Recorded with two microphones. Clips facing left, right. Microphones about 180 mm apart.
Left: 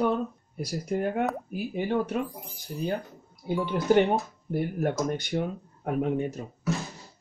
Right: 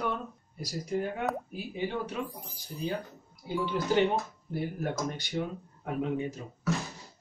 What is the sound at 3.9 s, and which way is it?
Speech, 55° left (ahead or behind).